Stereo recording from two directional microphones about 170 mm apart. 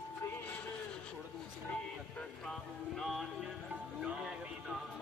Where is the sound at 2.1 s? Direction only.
Centre (ahead or behind).